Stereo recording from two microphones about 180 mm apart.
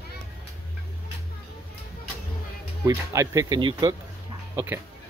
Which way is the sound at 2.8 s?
15° right (ahead or behind).